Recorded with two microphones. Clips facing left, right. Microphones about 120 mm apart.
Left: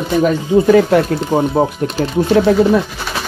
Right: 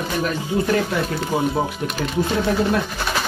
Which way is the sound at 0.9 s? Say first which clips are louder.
Left 11 dB; 70° left (ahead or behind).